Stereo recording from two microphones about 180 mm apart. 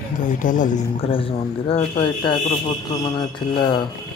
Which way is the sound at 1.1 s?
30° left (ahead or behind).